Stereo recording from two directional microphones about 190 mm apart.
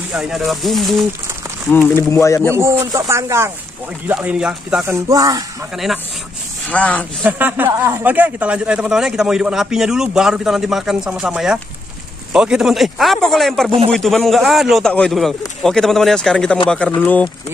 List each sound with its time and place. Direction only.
0.1 s a man's voice: 5° right (ahead or behind)
1.7 s speech: 10° left (ahead or behind)
2.8 s a man's voice: 15° right (ahead or behind)
5.0 s speech: 20° right (ahead or behind)
6.7 s speech: 5° left (ahead or behind)
7.2 s a man's voice: 10° right (ahead or behind); by 17.3 s 10° left (ahead or behind)